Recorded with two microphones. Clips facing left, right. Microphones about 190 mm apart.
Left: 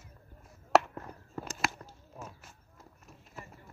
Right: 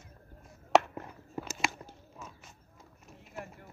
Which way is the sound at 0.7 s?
Centre (ahead or behind).